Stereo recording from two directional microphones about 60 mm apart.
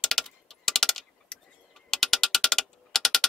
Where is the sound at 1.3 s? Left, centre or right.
Centre.